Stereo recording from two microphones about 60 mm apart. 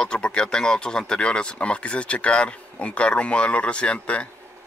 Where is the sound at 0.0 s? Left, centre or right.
Centre.